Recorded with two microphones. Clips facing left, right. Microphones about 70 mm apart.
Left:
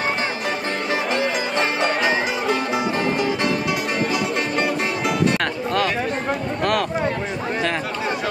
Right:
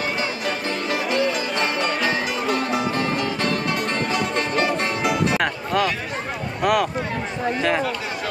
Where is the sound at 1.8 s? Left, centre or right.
Centre.